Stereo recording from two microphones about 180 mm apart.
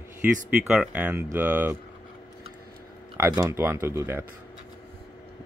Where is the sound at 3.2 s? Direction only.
15° right (ahead or behind).